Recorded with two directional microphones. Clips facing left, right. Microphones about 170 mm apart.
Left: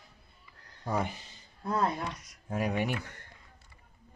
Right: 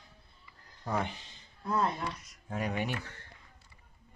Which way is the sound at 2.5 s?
10° left (ahead or behind).